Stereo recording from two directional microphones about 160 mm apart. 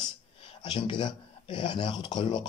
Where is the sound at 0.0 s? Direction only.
30° left (ahead or behind).